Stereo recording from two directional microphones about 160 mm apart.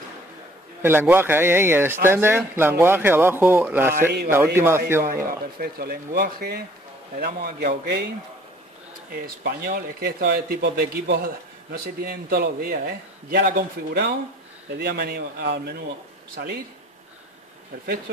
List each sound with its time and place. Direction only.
0.8 s speech: 15° right (ahead or behind)
5.0 s a man's voice: 65° right (ahead or behind); by 8.1 s 90° right
9.1 s speech: 70° right (ahead or behind); by 15.8 s 90° right